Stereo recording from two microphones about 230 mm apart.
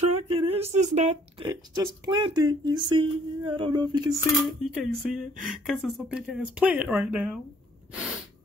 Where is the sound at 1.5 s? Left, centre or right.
Centre.